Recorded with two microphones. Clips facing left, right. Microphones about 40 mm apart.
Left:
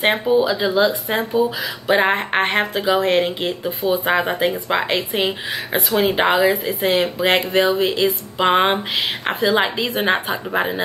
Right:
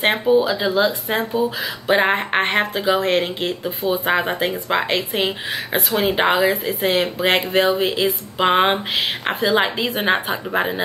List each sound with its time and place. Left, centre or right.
0.0 s speech: centre